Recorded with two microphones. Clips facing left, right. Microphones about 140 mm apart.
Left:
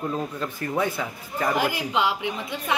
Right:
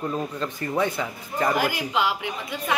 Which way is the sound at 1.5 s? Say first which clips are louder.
Even; 25° left (ahead or behind).